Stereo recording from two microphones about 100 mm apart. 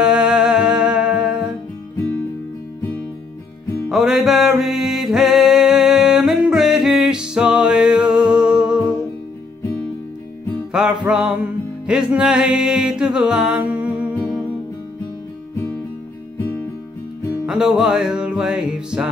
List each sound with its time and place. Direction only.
0.0 s humming: 10° right (ahead or behind)
3.9 s music: 5° right (ahead or behind)
10.7 s music: 5° right (ahead or behind)
16.3 s music: 15° left (ahead or behind)
17.5 s music: 5° right (ahead or behind)